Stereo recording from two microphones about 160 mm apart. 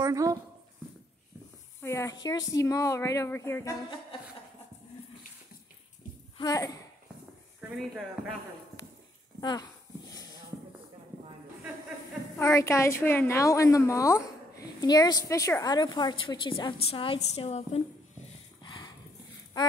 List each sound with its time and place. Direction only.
0.0 s speech: 20° right (ahead or behind)
1.8 s speech: 15° left (ahead or behind)
6.3 s speech: 25° left (ahead or behind)
7.7 s speech: centre (ahead or behind)
9.4 s speech: 25° left (ahead or behind)
12.4 s a woman's voice: 15° left (ahead or behind); by 17.6 s 40° left (ahead or behind)
18.6 s horse: 25° left (ahead or behind)